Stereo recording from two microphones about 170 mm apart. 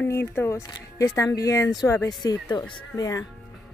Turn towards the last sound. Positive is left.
turn(degrees=20)  # may be behind; listen again after turning